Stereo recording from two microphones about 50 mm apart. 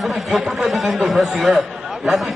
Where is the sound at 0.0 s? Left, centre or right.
Centre.